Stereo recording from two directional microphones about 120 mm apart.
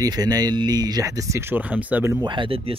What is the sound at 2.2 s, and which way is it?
Speech, 40° right (ahead or behind).